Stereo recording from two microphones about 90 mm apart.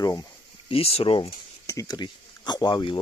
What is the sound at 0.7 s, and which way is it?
Speech, 90° left.